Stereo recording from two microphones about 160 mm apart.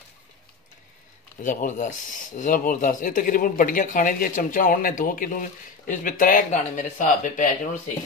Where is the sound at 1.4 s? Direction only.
55° left (ahead or behind).